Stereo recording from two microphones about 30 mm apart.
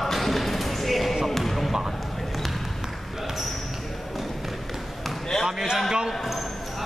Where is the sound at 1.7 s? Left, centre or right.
Centre.